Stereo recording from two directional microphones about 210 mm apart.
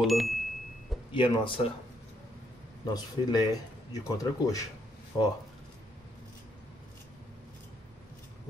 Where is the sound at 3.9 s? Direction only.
15° left (ahead or behind).